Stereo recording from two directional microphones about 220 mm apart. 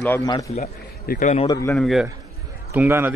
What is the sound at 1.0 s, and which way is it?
Speech, 45° left (ahead or behind).